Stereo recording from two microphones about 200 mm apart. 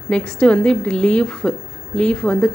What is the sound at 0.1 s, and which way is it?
A woman's voice, 5° left (ahead or behind).